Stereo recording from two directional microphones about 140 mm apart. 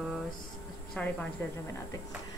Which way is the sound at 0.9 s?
10° left (ahead or behind).